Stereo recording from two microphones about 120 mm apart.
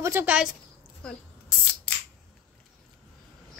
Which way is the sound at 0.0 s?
15° right (ahead or behind).